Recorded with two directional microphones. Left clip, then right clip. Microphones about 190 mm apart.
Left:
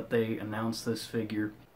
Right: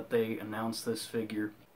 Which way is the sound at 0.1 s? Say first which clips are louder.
Left 1 dB; centre (ahead or behind).